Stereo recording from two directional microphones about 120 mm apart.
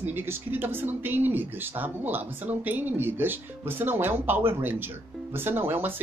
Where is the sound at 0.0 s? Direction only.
20° right (ahead or behind).